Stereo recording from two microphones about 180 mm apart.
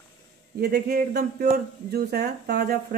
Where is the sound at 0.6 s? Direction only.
60° right (ahead or behind).